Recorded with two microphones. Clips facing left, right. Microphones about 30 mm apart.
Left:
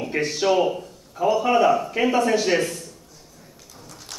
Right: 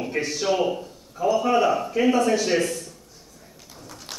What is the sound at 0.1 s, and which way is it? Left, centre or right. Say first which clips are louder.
Speech: left 4 dB; centre.